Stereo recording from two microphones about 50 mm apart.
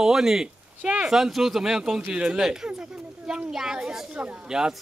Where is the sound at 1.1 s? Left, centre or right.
Centre.